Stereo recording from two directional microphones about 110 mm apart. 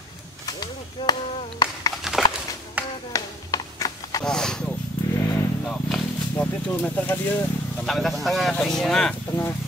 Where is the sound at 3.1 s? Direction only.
35° left (ahead or behind).